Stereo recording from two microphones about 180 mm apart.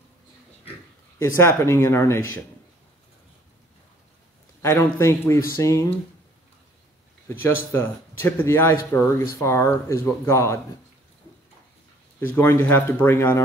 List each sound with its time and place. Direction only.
1.2 s speech: 15° left (ahead or behind)
4.6 s speech: 15° left (ahead or behind)
7.7 s speech: 10° left (ahead or behind)
12.3 s speech: 10° left (ahead or behind)